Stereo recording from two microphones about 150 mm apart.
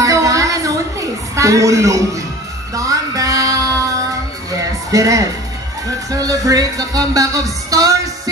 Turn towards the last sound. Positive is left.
turn(degrees=-25)  # may be behind; listen again after turning